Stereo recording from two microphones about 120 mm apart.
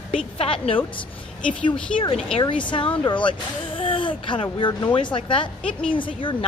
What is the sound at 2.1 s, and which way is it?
A woman's voice, 50° left (ahead or behind).